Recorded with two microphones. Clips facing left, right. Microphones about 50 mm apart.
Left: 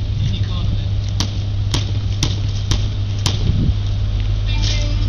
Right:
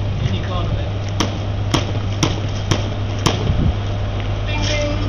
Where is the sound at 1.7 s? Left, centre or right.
Right.